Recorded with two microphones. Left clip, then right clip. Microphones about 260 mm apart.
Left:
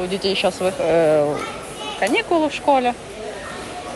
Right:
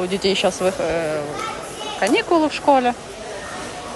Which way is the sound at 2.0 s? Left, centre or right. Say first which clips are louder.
Right 1 dB; centre.